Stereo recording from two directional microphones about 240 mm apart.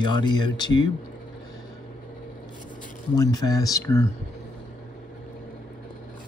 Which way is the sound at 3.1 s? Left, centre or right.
Centre.